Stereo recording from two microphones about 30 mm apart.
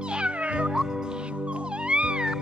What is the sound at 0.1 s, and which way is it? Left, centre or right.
Cat, right.